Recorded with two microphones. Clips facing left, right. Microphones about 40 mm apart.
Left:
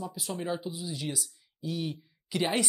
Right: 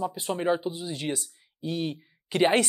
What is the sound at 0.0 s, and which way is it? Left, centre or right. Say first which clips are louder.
Speech: right 7 dB; right.